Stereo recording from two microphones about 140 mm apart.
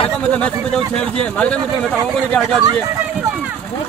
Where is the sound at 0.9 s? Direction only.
5° left (ahead or behind).